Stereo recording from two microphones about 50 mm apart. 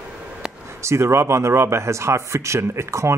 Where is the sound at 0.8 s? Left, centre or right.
Right.